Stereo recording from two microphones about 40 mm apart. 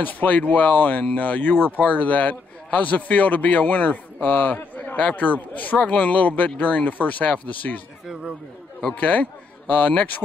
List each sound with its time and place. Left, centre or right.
0.0 s a man's voice: left
8.9 s a man's voice: left